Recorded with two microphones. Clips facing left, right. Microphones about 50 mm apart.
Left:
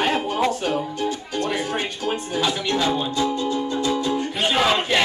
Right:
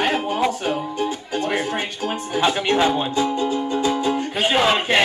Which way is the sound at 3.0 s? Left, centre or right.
Right.